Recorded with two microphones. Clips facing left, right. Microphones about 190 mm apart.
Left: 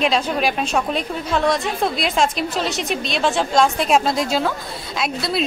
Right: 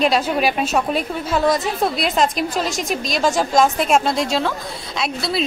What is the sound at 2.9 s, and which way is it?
Speech, 40° right (ahead or behind).